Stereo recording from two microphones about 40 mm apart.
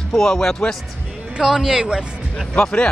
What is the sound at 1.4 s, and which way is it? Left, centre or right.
Speech, centre.